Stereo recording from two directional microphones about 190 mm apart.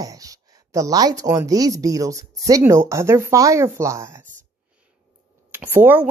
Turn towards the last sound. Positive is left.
turn(degrees=-10)  # may be behind; listen again after turning